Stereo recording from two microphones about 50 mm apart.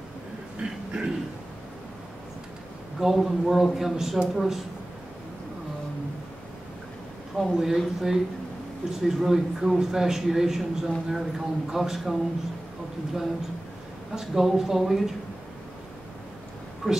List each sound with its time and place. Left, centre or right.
0.6 s a sound: centre
3.0 s a man's voice: centre
7.3 s a man's voice: centre
14.1 s a man's voice: centre
16.8 s a man's voice: centre